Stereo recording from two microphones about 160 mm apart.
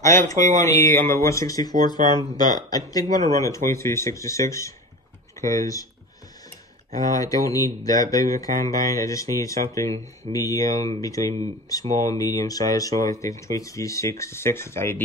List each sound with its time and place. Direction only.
0.0 s speech: 20° left (ahead or behind)
7.0 s speech: 20° left (ahead or behind)